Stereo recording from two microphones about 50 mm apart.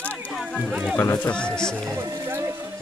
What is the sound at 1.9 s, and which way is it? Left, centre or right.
Music, right.